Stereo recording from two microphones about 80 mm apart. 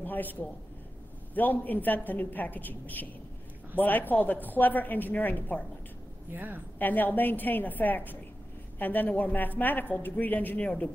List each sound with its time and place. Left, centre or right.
0.0 s a man's voice: left
6.3 s a woman's voice: right
6.8 s a woman's voice: left